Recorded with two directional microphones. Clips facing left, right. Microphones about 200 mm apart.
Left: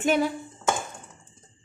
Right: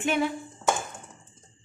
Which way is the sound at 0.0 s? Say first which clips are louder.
Left 3 dB; 40° left (ahead or behind).